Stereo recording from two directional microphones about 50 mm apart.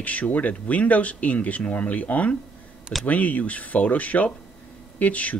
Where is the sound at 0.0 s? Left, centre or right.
Left.